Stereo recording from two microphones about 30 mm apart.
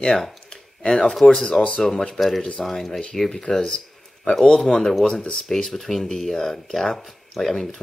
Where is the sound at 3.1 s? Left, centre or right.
Centre.